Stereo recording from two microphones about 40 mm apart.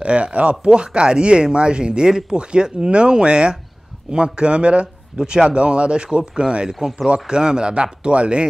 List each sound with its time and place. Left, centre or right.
0.0 s speech: right
6.7 s speech: centre
7.2 s speech: centre